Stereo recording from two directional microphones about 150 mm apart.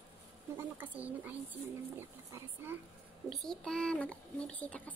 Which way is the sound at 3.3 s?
5° left (ahead or behind).